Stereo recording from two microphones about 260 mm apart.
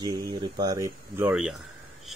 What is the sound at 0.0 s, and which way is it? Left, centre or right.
Speech, centre.